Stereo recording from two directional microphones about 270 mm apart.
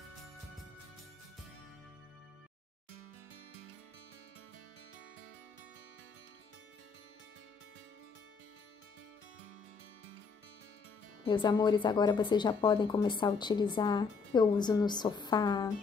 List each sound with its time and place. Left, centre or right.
11.2 s a woman's voice: centre